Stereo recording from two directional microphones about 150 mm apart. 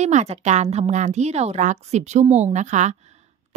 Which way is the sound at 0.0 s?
50° right (ahead or behind).